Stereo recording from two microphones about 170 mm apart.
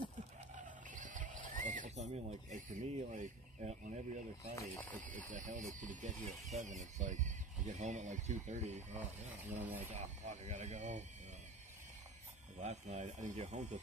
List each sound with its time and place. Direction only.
0.9 s speech: 50° right (ahead or behind)
4.6 s speech: 10° left (ahead or behind)
5.3 s speech: 50° right (ahead or behind)
12.5 s speech: 45° right (ahead or behind)